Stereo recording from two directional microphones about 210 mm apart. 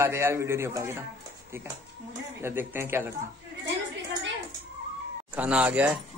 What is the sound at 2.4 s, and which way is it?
Speech, 10° right (ahead or behind).